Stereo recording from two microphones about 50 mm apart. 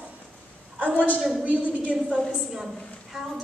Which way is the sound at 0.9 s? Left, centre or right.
Left.